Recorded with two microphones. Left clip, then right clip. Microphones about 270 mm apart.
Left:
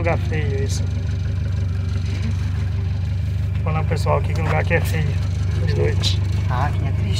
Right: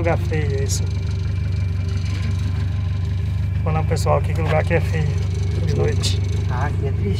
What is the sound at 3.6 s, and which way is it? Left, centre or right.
Speech, right.